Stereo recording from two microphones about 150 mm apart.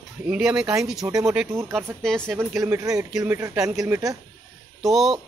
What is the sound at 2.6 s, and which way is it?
A man's voice, 20° right (ahead or behind).